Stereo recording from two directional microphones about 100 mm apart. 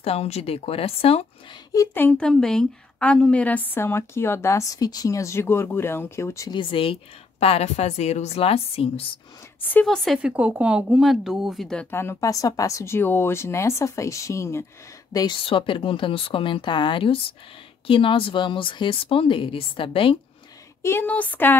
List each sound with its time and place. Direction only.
0.0 s a woman's voice: 90° left; by 1.2 s 75° left (ahead or behind)
2.0 s a woman's voice: 15° left (ahead or behind); by 6.5 s 30° left (ahead or behind)
6.5 s a woman's voice: 55° left (ahead or behind); by 9.2 s 75° left (ahead or behind)
9.6 s a woman's voice: 20° left (ahead or behind)
10.1 s speech: 10° right (ahead or behind); by 11.9 s 5° left (ahead or behind)
11.9 s a woman's voice: 25° left (ahead or behind)
15.4 s speech: 60° left (ahead or behind)
20.8 s a woman's voice: 20° left (ahead or behind)